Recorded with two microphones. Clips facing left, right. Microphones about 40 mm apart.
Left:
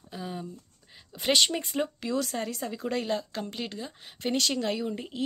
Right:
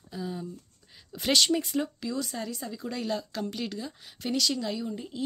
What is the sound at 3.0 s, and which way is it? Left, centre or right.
Speech, left.